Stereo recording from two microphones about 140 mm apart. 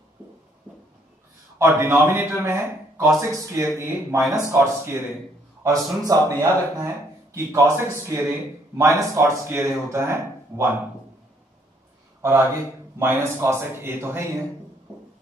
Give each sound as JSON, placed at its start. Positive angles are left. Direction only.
{"t": 1.6, "sound": "a man's voice", "side_deg": -20}
{"t": 12.2, "sound": "a man's voice", "side_deg": -15}